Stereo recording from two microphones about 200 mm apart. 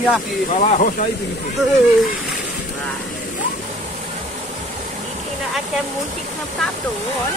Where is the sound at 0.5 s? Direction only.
35° left (ahead or behind).